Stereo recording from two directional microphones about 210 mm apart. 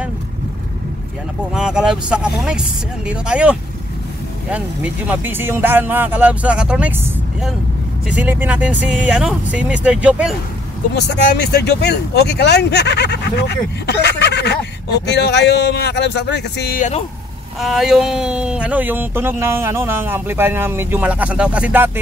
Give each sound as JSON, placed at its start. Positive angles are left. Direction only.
{"t": 1.5, "sound": "speech", "side_deg": -5}
{"t": 8.1, "sound": "speech", "side_deg": -10}
{"t": 11.3, "sound": "speech", "side_deg": 50}
{"t": 17.6, "sound": "speech", "side_deg": 0}